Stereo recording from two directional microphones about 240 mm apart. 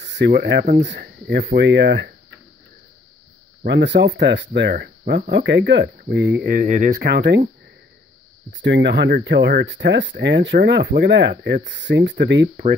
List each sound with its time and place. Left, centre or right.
0.0 s speech: right
3.6 s speech: right
8.5 s speech: right